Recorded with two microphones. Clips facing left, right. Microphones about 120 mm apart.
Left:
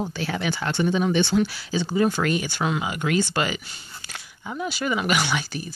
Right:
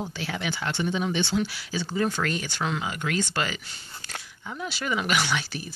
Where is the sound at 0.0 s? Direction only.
50° left (ahead or behind).